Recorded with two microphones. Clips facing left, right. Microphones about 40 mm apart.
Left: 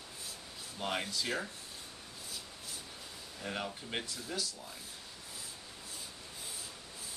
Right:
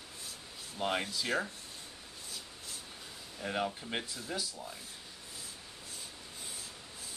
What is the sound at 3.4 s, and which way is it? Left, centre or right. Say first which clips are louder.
Speech: right 4 dB; centre.